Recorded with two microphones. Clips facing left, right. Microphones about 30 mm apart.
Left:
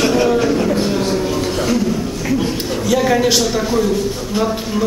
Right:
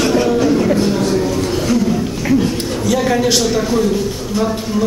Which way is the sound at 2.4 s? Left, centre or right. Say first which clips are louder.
Right 1 dB; centre.